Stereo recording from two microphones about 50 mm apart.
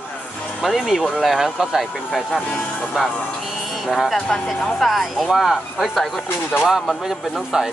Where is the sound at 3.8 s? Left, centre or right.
Centre.